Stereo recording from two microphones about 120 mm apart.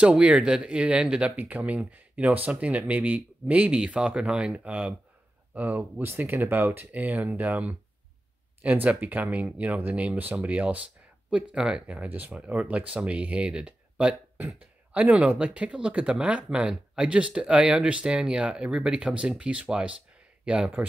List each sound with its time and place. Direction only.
0.0 s speech: 10° right (ahead or behind)